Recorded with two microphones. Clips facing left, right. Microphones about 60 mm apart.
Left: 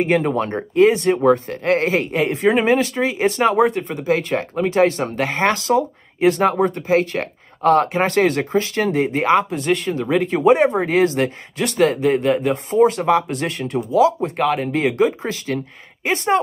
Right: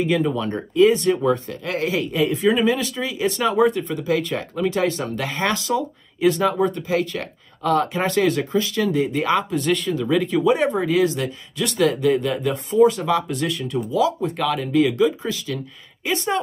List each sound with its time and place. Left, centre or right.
0.0 s speech: left
0.5 s speech: left